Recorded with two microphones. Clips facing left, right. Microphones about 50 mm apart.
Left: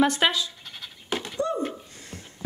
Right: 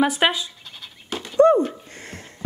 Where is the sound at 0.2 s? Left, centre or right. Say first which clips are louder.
Right 3 dB; right.